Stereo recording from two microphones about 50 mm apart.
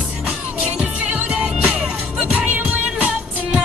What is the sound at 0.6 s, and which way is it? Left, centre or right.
Music, right.